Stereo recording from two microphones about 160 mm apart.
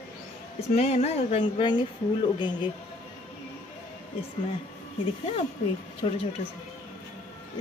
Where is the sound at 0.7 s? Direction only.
40° left (ahead or behind).